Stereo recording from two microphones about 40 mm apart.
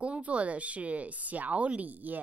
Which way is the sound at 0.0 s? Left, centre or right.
Right.